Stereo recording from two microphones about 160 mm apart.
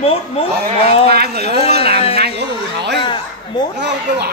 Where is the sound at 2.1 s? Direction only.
90° right.